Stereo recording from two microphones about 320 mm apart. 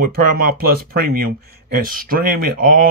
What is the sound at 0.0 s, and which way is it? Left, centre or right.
Speech, right.